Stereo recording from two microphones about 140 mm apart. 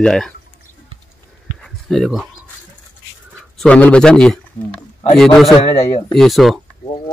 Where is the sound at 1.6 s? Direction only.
5° left (ahead or behind).